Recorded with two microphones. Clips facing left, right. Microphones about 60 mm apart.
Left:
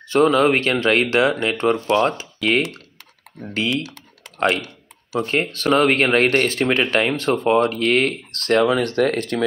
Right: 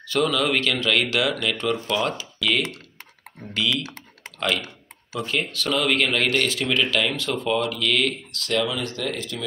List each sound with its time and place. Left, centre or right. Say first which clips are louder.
0.1 s speech: left 7 dB; left
3.8 s typing: left 1 dB; right
4.4 s speech: left 6 dB; left